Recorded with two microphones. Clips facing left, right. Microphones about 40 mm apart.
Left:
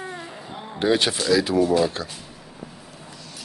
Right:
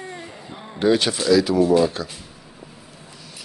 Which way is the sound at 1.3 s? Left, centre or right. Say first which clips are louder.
Right 4 dB; left.